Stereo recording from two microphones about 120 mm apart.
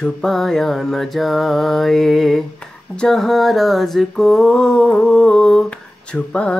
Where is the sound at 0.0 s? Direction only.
5° left (ahead or behind).